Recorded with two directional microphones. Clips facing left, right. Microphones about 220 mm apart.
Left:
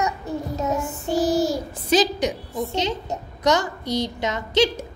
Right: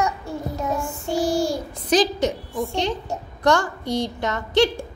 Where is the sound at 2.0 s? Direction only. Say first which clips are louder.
Right 1 dB; 20° left (ahead or behind).